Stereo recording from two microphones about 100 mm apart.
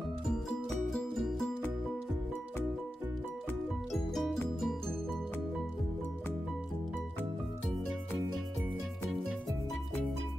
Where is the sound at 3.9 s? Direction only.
Centre (ahead or behind).